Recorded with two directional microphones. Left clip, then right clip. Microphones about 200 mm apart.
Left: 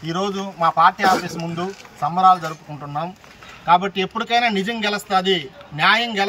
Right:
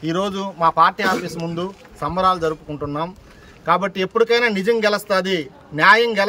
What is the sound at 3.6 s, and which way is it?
A man's voice, 20° right (ahead or behind).